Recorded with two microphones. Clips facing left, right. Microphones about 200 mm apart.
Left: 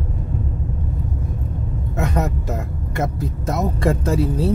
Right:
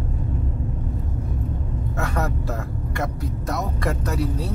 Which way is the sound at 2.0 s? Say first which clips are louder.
Left 4 dB; 20° left (ahead or behind).